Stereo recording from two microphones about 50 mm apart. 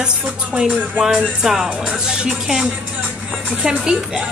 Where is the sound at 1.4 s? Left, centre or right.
Centre.